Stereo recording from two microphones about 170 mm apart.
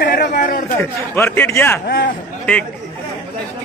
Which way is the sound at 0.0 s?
65° left (ahead or behind).